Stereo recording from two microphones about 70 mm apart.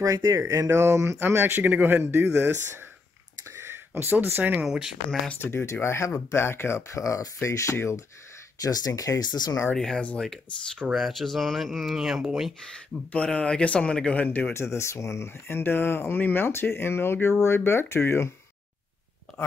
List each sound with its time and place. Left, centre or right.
0.0 s speech: right
3.4 s a sound: right
4.6 s speech: centre
5.4 s speech: left
8.5 s speech: left
9.2 s speech: left
9.8 s speech: centre
10.9 s speech: centre
13.1 s speech: centre
14.5 s speech: left